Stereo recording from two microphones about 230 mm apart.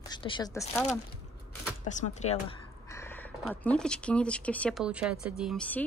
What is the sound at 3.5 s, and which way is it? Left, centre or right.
Speech, centre.